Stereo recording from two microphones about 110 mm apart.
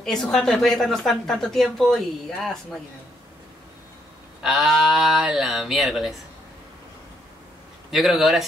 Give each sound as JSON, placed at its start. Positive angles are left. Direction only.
{"t": 0.0, "sound": "a woman's voice", "side_deg": 5}
{"t": 4.4, "sound": "a woman's voice", "side_deg": 0}
{"t": 7.9, "sound": "a woman's voice", "side_deg": 0}